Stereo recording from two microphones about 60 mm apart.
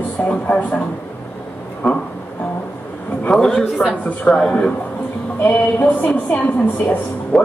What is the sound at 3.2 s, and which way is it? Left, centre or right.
A man's voice, centre.